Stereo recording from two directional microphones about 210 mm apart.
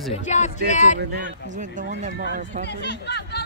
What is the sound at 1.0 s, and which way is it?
Speech, 50° right (ahead or behind).